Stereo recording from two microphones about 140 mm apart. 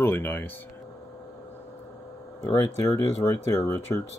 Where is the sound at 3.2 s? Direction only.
15° left (ahead or behind).